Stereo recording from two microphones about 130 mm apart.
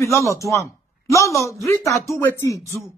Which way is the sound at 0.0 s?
25° left (ahead or behind).